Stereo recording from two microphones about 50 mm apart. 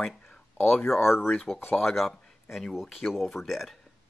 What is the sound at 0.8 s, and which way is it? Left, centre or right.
Speech, left.